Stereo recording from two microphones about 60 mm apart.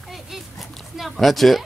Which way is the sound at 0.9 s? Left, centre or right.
Centre.